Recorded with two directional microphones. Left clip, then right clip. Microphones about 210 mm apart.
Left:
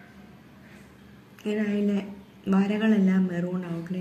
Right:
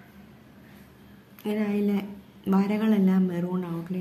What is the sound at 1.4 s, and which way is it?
Speech, 25° right (ahead or behind).